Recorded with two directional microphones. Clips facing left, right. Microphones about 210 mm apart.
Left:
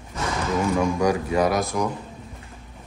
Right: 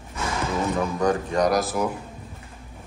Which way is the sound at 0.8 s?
10° left (ahead or behind).